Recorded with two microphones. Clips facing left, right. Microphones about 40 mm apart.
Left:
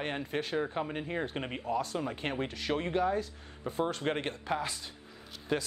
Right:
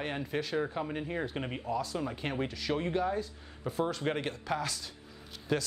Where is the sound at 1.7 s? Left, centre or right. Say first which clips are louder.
Left 2 dB; left.